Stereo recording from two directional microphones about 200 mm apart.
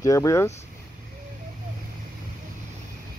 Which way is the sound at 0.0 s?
15° left (ahead or behind).